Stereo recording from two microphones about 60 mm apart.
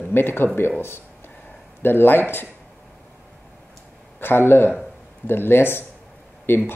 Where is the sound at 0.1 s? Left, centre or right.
Left.